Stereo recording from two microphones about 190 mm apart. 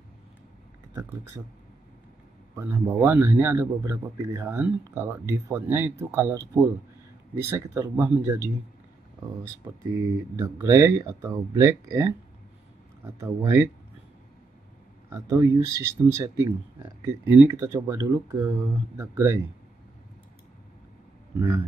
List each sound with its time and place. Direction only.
2.5 s a man's voice: 15° right (ahead or behind)
9.8 s a man's voice: 15° right (ahead or behind)
15.0 s a man's voice: 15° right (ahead or behind)